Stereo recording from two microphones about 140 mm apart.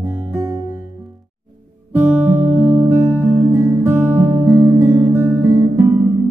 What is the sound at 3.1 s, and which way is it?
Music, 15° right (ahead or behind).